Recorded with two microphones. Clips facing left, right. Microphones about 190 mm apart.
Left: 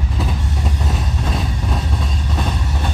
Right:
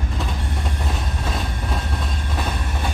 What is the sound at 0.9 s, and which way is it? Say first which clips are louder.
Train: left 3 dB; centre (ahead or behind).